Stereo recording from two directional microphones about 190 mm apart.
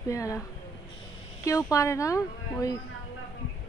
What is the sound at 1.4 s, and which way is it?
Speech, 15° left (ahead or behind).